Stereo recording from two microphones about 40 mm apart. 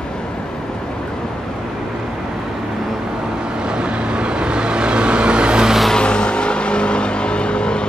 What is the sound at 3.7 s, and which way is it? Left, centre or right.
Vehicle, right.